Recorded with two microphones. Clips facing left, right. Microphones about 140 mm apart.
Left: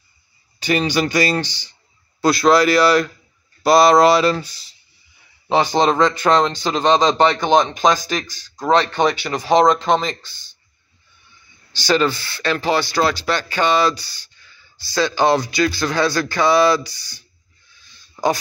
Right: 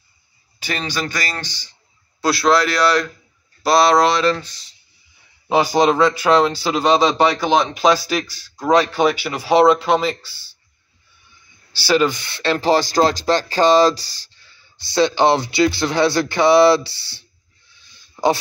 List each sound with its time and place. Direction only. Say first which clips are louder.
0.7 s speech: left 7 dB; 15° left (ahead or behind)
2.2 s speech: left 2 dB; centre (ahead or behind)
5.5 s speech: right 1 dB; 10° right (ahead or behind)
11.7 s speech: right 1 dB; 10° right (ahead or behind); by 12.5 s 25° right (ahead or behind)
12.5 s speech: right 4 dB; 35° right (ahead or behind)
14.8 s speech: right 2 dB; 25° right (ahead or behind)